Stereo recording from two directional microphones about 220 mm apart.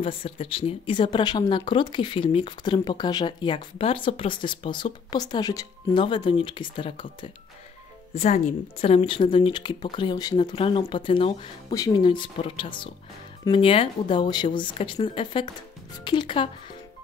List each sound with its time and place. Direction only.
0.0 s speech: 25° left (ahead or behind)